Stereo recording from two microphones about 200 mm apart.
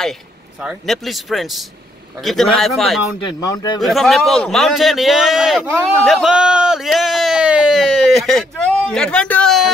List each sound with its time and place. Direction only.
0.0 s a man's voice: centre (ahead or behind)
3.3 s a man's voice: 20° left (ahead or behind)
3.8 s a man's voice: centre (ahead or behind)